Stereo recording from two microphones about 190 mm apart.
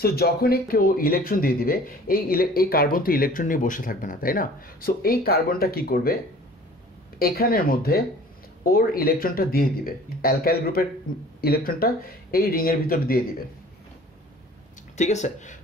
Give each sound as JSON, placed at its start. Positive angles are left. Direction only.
{"t": 0.0, "sound": "speech", "side_deg": 55}
{"t": 7.2, "sound": "speech", "side_deg": 50}
{"t": 15.0, "sound": "speech", "side_deg": 40}